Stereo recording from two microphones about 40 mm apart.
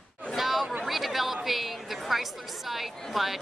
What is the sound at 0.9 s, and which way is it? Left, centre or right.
A woman's voice, centre.